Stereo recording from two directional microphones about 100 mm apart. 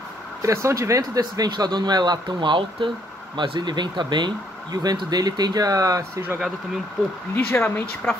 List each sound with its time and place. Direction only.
0.4 s speech: 30° right (ahead or behind)
7.3 s speech: 20° left (ahead or behind)